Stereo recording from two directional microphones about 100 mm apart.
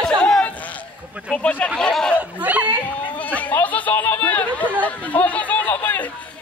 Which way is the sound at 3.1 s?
15° left (ahead or behind).